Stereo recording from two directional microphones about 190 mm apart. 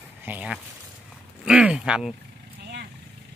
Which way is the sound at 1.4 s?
5° right (ahead or behind).